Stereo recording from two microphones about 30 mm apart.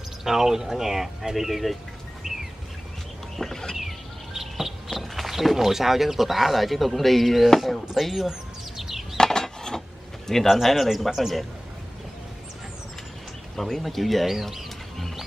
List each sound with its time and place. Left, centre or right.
0.2 s speech: centre
3.3 s a sound: centre
3.7 s bird: centre
5.2 s speech: centre
8.7 s bird flight: centre
9.1 s a sound: centre
10.5 s speech: centre
13.6 s speech: centre